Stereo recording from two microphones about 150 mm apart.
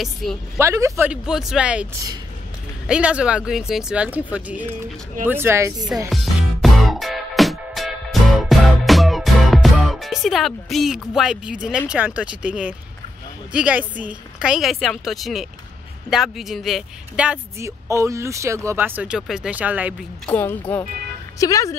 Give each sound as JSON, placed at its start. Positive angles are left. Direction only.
{"t": 0.0, "sound": "a woman's voice", "side_deg": 0}
{"t": 0.6, "sound": "speech", "side_deg": -20}
{"t": 2.9, "sound": "speech", "side_deg": -5}
{"t": 6.0, "sound": "music", "side_deg": 0}
{"t": 11.9, "sound": "a woman's voice", "side_deg": -10}
{"t": 17.6, "sound": "speech", "side_deg": -20}
{"t": 20.7, "sound": "speech", "side_deg": 10}
{"t": 21.4, "sound": "speech", "side_deg": 20}